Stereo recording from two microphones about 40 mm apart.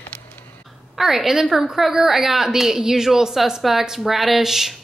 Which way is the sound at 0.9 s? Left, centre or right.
Centre.